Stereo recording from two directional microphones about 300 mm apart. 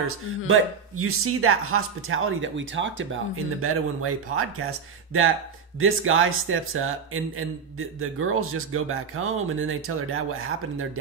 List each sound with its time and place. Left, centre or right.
0.5 s speech: right